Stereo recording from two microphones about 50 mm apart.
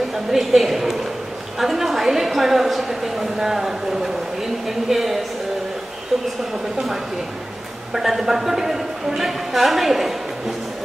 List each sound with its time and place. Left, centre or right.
0.1 s a woman's voice: centre
7.9 s a woman's voice: centre